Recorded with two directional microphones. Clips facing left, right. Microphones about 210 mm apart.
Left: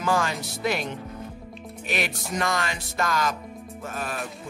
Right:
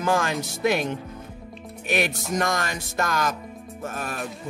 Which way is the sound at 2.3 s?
45° right (ahead or behind).